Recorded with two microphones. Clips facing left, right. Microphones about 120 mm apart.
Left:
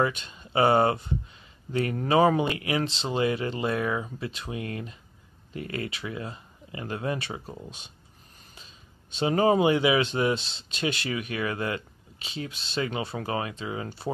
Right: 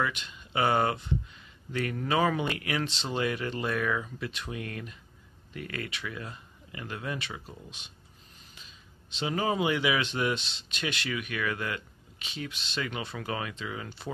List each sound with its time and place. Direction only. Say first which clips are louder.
0.0 s speech: left 5 dB; 35° left (ahead or behind)
8.5 s a sound: left 3 dB; 35° left (ahead or behind)
9.6 s speech: left 6 dB; 30° left (ahead or behind)